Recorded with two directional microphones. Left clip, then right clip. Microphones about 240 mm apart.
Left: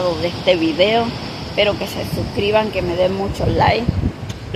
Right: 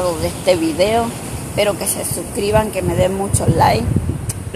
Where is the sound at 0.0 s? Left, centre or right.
Centre.